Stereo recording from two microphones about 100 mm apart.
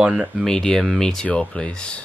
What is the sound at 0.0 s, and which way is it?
Speech, 5° right (ahead or behind).